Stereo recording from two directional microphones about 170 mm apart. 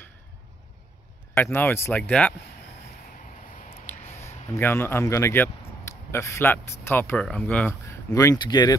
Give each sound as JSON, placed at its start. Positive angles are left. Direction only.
{"t": 1.3, "sound": "speech", "side_deg": 10}
{"t": 3.8, "sound": "speech", "side_deg": 15}